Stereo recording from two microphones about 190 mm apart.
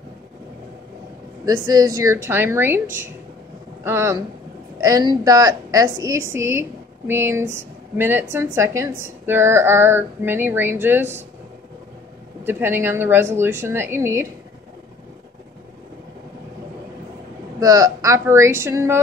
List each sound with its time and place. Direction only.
1.4 s a woman's voice: 20° right (ahead or behind)
3.8 s a woman's voice: 15° right (ahead or behind)
12.4 s a woman's voice: 10° right (ahead or behind)
17.6 s a woman's voice: 20° right (ahead or behind)